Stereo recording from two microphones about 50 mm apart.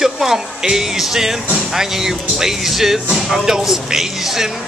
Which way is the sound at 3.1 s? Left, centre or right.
Centre.